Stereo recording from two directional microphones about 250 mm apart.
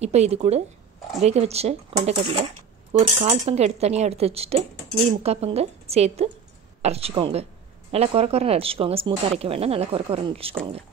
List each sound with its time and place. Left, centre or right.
0.0 s cutlery: right